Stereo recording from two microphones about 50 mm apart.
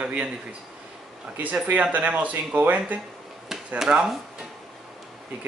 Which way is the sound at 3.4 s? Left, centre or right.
Centre.